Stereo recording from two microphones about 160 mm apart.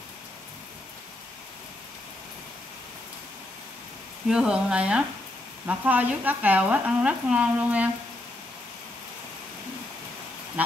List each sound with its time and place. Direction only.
4.3 s speech: 5° right (ahead or behind)
5.7 s frying: 10° right (ahead or behind)